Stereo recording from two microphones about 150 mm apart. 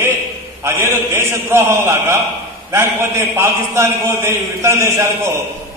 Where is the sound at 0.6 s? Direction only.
15° right (ahead or behind).